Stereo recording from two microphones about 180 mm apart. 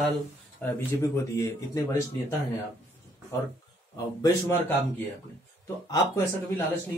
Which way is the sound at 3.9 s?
20° left (ahead or behind).